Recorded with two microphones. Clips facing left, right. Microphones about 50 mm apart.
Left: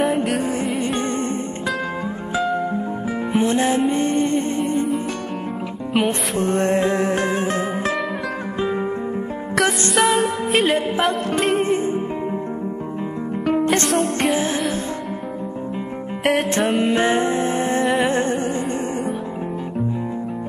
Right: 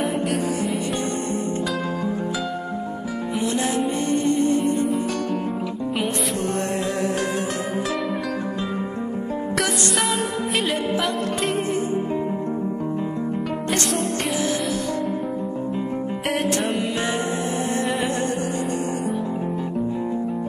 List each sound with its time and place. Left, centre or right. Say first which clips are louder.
0.0 s music: left 4 dB; centre
3.3 s music: left 5 dB; left
6.4 s music: left 10 dB; left
9.6 s music: left 7 dB; centre
13.8 s music: left 5 dB; centre
16.8 s music: left 6 dB; left